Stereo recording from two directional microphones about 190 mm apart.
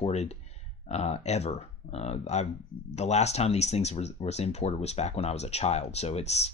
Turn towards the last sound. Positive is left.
turn(degrees=35)  # may be behind; listen again after turning